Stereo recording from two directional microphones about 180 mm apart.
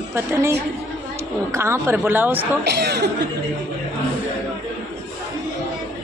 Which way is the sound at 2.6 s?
70° right (ahead or behind).